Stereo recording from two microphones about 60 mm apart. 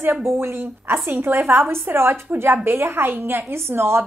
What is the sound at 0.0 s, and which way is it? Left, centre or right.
A woman's voice, right.